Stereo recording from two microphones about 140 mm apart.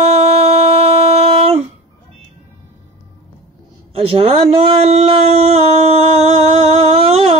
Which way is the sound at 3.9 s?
45° right (ahead or behind).